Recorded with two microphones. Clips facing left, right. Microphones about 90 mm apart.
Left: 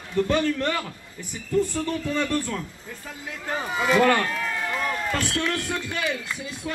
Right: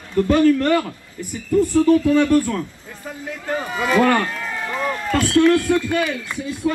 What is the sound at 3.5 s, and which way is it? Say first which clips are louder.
A man's voice: right 2 dB; 5° left (ahead or behind).